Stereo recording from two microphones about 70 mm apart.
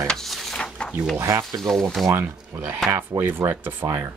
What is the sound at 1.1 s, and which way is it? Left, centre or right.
Speech, right.